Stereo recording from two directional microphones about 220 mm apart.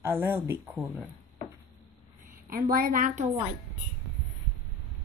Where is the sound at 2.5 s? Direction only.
40° right (ahead or behind).